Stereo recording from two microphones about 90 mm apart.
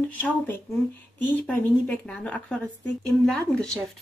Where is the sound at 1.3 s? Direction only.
15° left (ahead or behind).